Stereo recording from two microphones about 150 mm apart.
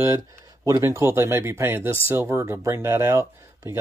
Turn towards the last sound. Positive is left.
turn(degrees=-20)  # may be behind; listen again after turning